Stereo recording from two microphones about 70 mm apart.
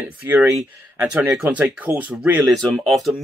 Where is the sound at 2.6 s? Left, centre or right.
Centre.